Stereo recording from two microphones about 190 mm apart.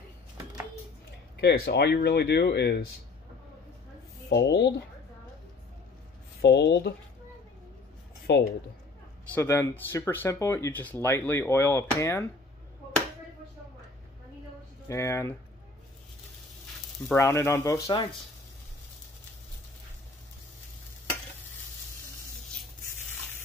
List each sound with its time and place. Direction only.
1.4 s speech: 60° left (ahead or behind)
4.3 s speech: 65° left (ahead or behind)
6.4 s speech: 65° left (ahead or behind)
8.3 s speech: 65° left (ahead or behind)
9.3 s speech: 15° left (ahead or behind)
14.9 s speech: 15° left (ahead or behind)
17.1 s speech: 15° left (ahead or behind)